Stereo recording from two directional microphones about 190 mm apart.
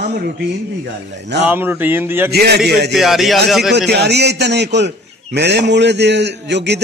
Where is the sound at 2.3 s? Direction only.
55° right (ahead or behind).